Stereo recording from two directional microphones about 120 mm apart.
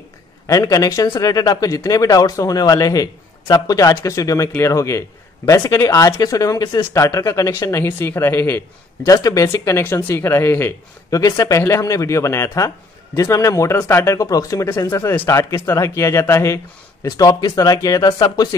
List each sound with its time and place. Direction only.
0.5 s speech: 30° left (ahead or behind)
7.0 s speech: 25° left (ahead or behind)
11.1 s speech: 30° left (ahead or behind)